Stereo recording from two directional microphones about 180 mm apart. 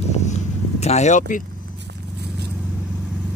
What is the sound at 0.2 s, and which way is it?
Vehicle, 40° left (ahead or behind).